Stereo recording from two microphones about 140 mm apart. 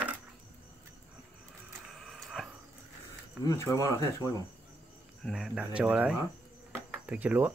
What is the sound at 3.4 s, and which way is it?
Speech, 20° left (ahead or behind).